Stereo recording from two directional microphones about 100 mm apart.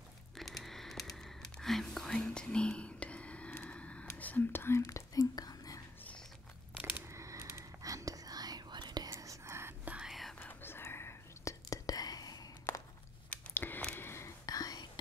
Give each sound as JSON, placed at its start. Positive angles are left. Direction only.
{"t": 0.4, "sound": "whispering", "side_deg": 0}
{"t": 4.1, "sound": "speech", "side_deg": 20}
{"t": 7.1, "sound": "whispering", "side_deg": -30}
{"t": 9.1, "sound": "whispering", "side_deg": -30}
{"t": 9.8, "sound": "whispering", "side_deg": -10}
{"t": 10.4, "sound": "whispering", "side_deg": 20}
{"t": 12.7, "sound": "a sound", "side_deg": 20}
{"t": 13.5, "sound": "biting", "side_deg": 20}
{"t": 13.9, "sound": "whispering", "side_deg": 25}